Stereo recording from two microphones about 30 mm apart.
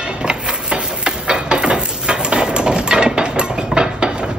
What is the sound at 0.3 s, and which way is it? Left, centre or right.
Ratchet, right.